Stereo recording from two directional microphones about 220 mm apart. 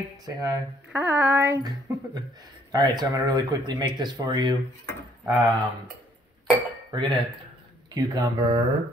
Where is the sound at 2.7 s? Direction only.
20° right (ahead or behind).